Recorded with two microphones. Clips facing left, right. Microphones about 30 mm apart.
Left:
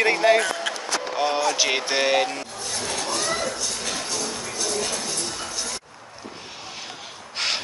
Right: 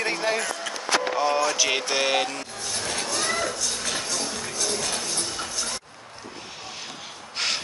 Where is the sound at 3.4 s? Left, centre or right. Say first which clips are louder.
Even; centre.